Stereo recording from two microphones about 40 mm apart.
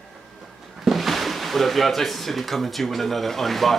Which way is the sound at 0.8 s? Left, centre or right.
Centre.